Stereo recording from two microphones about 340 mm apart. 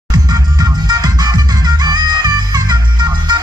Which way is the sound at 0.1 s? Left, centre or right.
Centre.